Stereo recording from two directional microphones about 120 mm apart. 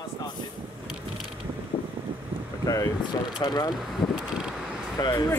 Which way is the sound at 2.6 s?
30° left (ahead or behind).